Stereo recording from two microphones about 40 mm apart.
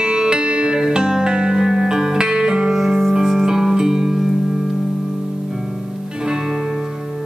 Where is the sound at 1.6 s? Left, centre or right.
Centre.